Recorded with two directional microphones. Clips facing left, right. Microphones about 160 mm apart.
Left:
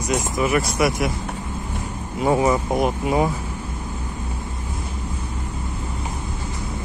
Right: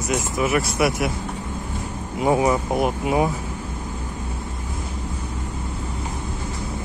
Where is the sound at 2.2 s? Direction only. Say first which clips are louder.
Even; 10° right (ahead or behind).